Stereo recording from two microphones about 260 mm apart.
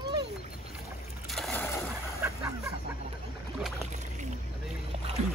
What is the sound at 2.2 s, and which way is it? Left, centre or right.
Chicken, centre.